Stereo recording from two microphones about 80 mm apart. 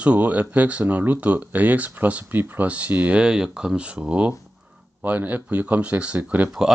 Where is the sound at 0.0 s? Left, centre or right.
Centre.